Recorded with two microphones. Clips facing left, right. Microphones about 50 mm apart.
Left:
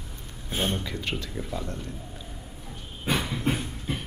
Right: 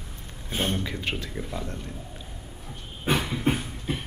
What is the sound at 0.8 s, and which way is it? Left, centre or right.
Speech, centre.